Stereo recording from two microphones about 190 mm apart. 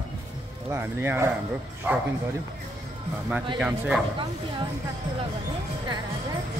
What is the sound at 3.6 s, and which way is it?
Speech, 5° right (ahead or behind).